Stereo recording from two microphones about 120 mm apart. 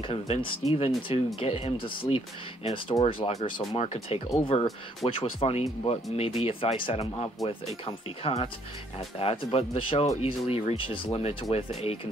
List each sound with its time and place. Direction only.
0.1 s speech: 60° left (ahead or behind)
3.5 s speech: 60° left (ahead or behind)